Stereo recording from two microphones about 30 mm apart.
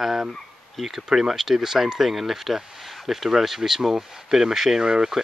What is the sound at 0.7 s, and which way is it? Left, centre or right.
Speech, centre.